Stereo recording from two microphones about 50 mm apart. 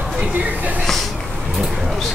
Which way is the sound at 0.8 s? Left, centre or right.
Centre.